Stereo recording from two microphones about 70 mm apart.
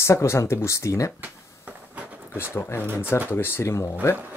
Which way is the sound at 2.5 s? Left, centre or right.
Left.